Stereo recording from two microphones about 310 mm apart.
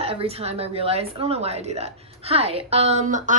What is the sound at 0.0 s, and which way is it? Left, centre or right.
A woman's voice, centre.